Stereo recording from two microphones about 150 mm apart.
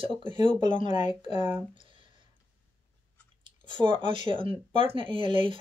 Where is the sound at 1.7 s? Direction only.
35° right (ahead or behind).